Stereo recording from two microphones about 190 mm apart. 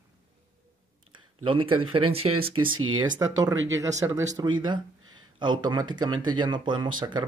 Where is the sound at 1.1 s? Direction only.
25° right (ahead or behind).